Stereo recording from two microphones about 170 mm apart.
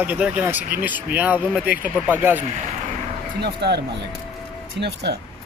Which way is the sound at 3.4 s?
80° right.